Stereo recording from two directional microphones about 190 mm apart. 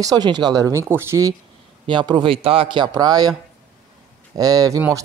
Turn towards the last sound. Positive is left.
turn(degrees=-20)  # may be behind; listen again after turning